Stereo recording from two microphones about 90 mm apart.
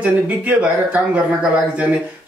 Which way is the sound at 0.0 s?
15° right (ahead or behind).